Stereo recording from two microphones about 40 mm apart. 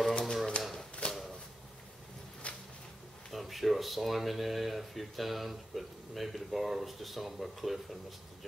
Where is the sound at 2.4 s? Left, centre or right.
Left.